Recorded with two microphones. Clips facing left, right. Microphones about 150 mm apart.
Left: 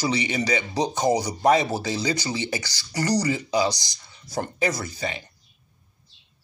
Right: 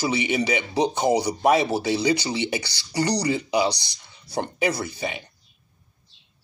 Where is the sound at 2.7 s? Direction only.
65° right (ahead or behind).